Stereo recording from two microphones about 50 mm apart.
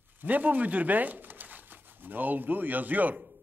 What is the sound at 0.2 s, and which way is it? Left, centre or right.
A man's voice, right.